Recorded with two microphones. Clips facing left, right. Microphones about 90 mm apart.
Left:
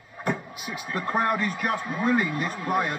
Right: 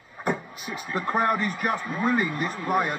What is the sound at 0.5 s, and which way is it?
Speech, 10° left (ahead or behind).